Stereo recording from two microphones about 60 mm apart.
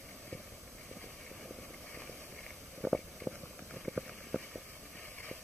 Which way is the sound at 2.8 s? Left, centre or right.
Centre.